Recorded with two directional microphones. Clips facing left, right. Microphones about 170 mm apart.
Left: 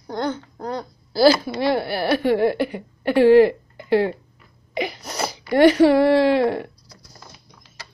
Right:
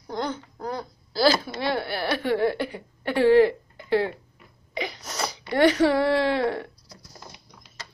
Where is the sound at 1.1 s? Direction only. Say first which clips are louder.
Left 6 dB; 5° left (ahead or behind).